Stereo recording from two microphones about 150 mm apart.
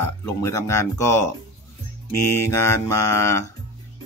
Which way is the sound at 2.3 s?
15° left (ahead or behind).